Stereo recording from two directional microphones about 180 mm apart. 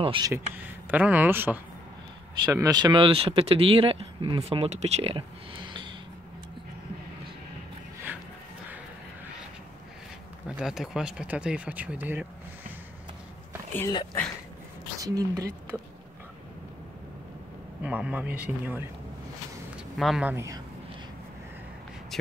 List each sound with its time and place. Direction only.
0.0 s speech: 30° right (ahead or behind)
0.3 s speech: 10° right (ahead or behind); by 5.9 s 25° right (ahead or behind)
10.5 s speech: 5° right (ahead or behind)
13.7 s speech: 15° left (ahead or behind)
15.0 s a woman's voice: 20° right (ahead or behind)
17.8 s speech: 10° right (ahead or behind)
20.0 s speech: 5° right (ahead or behind)
22.1 s speech: centre (ahead or behind)